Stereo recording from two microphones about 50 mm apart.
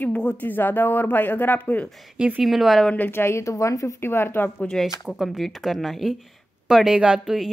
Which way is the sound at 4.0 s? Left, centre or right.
Left.